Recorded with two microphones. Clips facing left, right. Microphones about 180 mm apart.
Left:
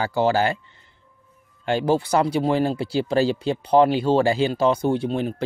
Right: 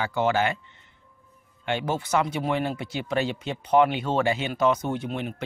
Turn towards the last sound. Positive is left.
turn(degrees=35)  # may be behind; listen again after turning